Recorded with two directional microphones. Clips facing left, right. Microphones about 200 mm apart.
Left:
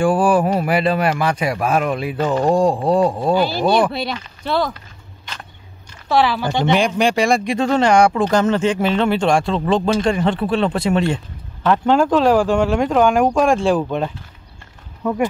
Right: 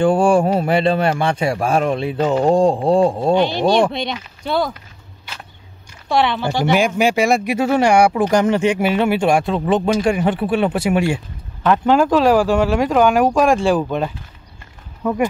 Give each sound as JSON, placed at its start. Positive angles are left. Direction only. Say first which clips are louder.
{"t": 0.0, "sound": "speech", "louder": "right 1 dB", "side_deg": -25}
{"t": 3.9, "sound": "speech", "louder": "even", "side_deg": 5}
{"t": 6.0, "sound": "speech", "louder": "left 1 dB", "side_deg": 0}